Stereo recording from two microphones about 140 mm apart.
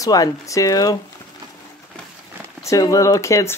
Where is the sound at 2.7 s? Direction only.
25° left (ahead or behind).